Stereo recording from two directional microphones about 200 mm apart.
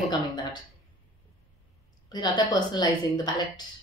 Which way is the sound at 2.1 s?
20° left (ahead or behind).